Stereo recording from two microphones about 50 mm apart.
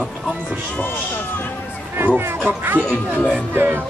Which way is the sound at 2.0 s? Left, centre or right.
Right.